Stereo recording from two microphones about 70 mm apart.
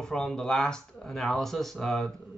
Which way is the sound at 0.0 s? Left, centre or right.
Centre.